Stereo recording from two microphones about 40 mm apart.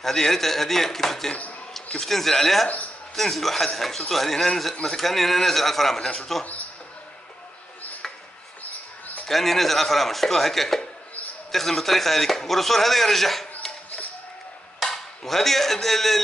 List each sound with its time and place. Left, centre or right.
0.0 s speech: centre
5.9 s a man's voice: left
9.3 s speech: centre
14.8 s dishes: centre